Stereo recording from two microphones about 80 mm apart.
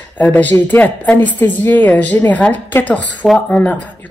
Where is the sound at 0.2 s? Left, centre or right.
Left.